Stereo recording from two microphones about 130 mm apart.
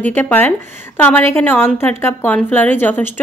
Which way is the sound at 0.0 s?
15° left (ahead or behind).